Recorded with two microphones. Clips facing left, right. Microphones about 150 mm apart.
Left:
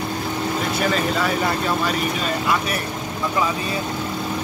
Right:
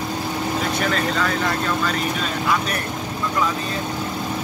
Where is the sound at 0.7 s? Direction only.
5° left (ahead or behind).